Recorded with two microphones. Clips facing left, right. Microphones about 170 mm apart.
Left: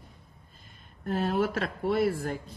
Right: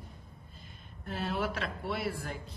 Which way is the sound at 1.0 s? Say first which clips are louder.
Left 7 dB; 45° left (ahead or behind).